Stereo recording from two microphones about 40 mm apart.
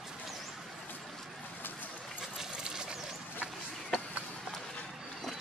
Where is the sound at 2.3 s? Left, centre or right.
Centre.